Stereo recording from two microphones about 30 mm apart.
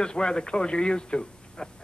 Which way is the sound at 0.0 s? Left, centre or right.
Left.